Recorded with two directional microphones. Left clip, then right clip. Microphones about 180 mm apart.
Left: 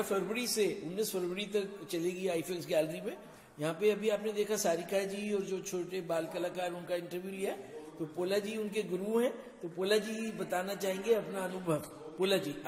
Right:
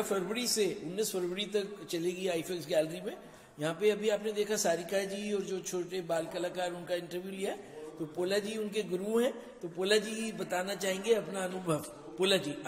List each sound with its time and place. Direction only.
0.1 s a man's voice: 5° right (ahead or behind)